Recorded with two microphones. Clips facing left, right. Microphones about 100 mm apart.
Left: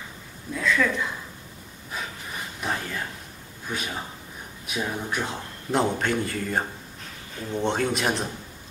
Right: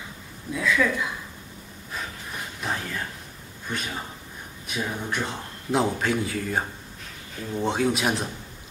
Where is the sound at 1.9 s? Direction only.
Centre (ahead or behind).